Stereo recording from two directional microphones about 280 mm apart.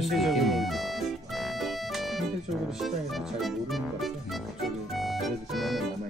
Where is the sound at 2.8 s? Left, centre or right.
Centre.